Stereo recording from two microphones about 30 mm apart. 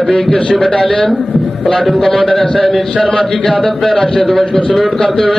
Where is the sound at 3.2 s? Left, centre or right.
Left.